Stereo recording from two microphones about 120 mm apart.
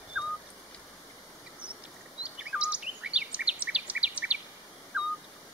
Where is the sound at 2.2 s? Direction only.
10° right (ahead or behind).